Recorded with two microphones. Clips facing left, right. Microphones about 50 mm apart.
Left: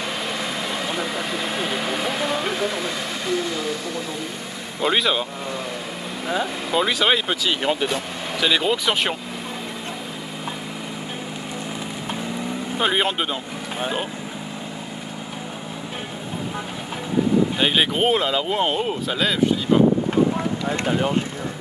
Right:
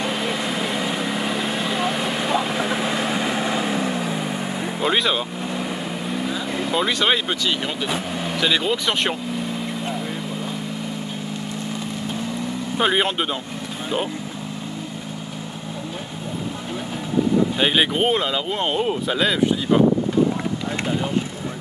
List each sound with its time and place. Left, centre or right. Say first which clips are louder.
0.0 s vehicle: right 3 dB; centre; by 4.0 s right
4.8 s speech: left 1 dB; centre
6.7 s speech: left 1 dB; centre
12.7 s speech: right 1 dB; centre
17.6 s speech: right 1 dB; centre